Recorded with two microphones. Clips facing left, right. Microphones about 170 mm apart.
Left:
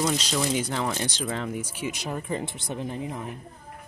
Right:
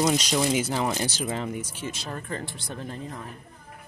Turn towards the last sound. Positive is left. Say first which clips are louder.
# left 4 dB
turn(degrees=15)  # may be behind; listen again after turning